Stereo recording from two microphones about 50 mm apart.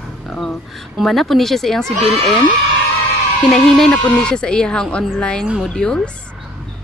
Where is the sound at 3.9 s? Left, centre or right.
Left.